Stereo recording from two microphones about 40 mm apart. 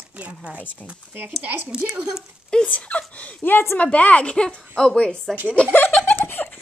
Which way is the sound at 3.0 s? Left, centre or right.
Left.